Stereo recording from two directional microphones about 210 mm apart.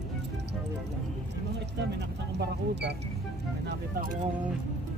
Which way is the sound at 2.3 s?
55° right (ahead or behind).